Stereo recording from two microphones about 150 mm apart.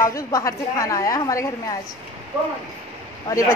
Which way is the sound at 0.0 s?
20° left (ahead or behind).